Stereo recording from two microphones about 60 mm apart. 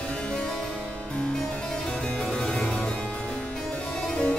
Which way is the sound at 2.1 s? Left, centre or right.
Centre.